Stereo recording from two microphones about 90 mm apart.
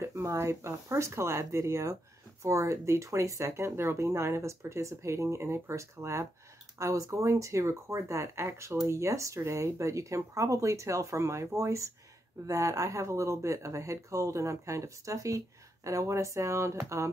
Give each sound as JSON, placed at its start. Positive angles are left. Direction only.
{"t": 0.0, "sound": "speech", "side_deg": -35}